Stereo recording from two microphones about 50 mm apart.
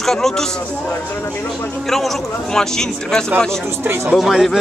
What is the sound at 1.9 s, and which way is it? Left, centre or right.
A man's voice, centre.